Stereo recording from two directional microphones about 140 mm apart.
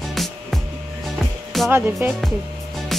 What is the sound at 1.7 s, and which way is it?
Speech, 15° right (ahead or behind).